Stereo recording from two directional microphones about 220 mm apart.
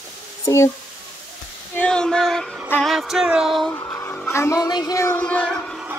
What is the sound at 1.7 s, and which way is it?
Music, 5° left (ahead or behind).